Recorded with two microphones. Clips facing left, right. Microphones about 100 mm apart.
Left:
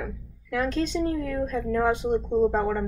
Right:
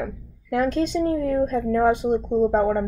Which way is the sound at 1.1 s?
35° right (ahead or behind).